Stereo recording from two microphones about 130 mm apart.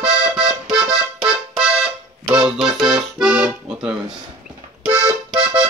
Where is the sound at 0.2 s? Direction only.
5° right (ahead or behind).